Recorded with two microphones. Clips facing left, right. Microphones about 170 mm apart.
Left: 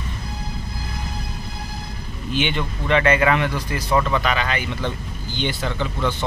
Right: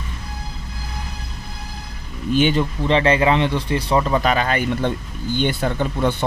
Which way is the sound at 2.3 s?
40° right (ahead or behind).